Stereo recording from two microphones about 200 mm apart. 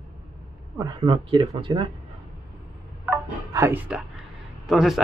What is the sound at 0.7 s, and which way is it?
Speech, 20° right (ahead or behind).